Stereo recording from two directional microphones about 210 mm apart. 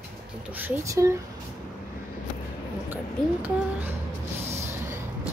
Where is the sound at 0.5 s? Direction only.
10° right (ahead or behind).